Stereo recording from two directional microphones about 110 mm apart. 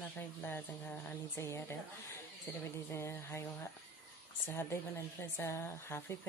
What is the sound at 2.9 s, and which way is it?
Speech, 25° left (ahead or behind).